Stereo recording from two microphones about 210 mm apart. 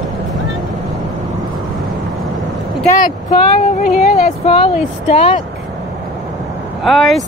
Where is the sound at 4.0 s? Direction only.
35° left (ahead or behind).